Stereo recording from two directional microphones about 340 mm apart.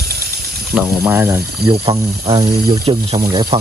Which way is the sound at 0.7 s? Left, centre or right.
Centre.